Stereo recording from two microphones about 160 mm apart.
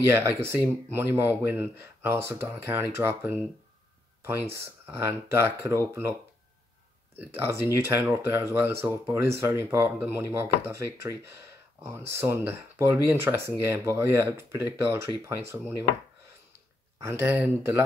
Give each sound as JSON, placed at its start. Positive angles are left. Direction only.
{"t": 0.0, "sound": "speech", "side_deg": -15}
{"t": 7.2, "sound": "speech", "side_deg": -15}
{"t": 17.0, "sound": "speech", "side_deg": -15}